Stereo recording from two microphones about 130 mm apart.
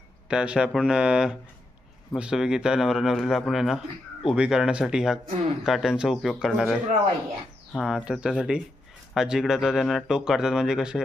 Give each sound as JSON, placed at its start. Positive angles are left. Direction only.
{"t": 0.3, "sound": "speech", "side_deg": -5}
{"t": 7.8, "sound": "speech", "side_deg": -5}